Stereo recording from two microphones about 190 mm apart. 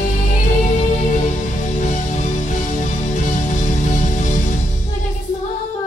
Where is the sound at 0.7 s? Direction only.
40° left (ahead or behind).